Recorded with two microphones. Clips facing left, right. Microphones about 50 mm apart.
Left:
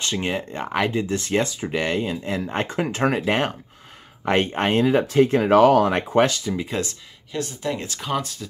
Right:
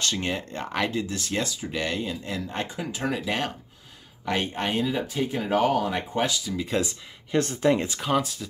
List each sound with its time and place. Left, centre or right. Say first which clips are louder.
0.0 s speech: left 3 dB; left
2.7 s speech: left 10 dB; left
3.2 s speech: left 6 dB; left
6.8 s speech: left 1 dB; centre
7.6 s speech: right 7 dB; right
8.0 s speech: right 1 dB; centre